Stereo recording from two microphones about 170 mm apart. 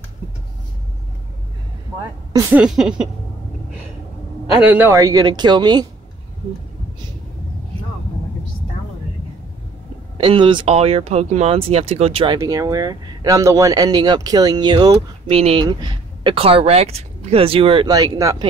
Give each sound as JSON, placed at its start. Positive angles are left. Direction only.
{"t": 2.5, "sound": "a sound", "side_deg": -5}
{"t": 4.6, "sound": "speech", "side_deg": -10}
{"t": 10.1, "sound": "speech", "side_deg": -30}
{"t": 12.4, "sound": "speech", "side_deg": -20}